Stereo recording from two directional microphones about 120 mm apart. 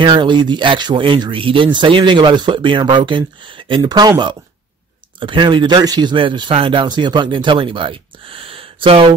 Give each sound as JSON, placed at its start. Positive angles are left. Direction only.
{"t": 0.0, "sound": "speech", "side_deg": -40}
{"t": 5.2, "sound": "a man's voice", "side_deg": -40}